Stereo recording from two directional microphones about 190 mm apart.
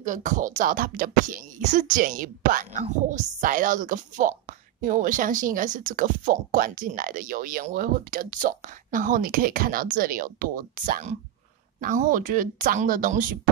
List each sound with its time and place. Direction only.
0.0 s speech: 40° right (ahead or behind)